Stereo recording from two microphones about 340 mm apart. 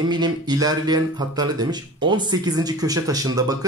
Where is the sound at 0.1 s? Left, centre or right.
Centre.